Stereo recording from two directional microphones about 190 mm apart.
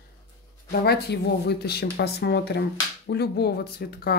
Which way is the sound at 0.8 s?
60° left (ahead or behind).